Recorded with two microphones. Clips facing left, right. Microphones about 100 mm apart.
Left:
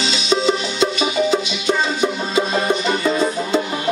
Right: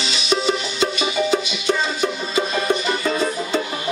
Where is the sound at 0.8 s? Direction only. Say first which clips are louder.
Left 3 dB; 20° left (ahead or behind).